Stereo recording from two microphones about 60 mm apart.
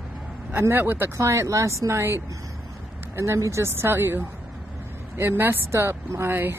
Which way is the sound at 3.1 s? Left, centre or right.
Right.